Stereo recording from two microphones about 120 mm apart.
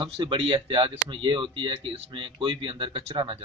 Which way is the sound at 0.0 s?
45° right (ahead or behind).